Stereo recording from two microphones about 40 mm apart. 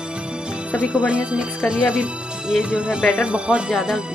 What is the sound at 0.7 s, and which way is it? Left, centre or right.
Speech, right.